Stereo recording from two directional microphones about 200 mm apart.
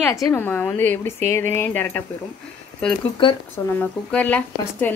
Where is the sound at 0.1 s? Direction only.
15° left (ahead or behind).